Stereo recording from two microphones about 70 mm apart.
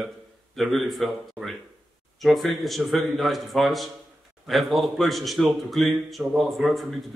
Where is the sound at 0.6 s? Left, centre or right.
Centre.